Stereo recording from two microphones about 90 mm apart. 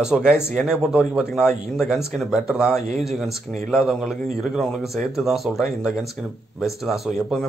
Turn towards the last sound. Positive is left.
turn(degrees=-5)  # may be behind; listen again after turning